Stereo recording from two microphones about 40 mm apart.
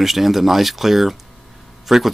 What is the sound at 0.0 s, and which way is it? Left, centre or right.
Speech, centre.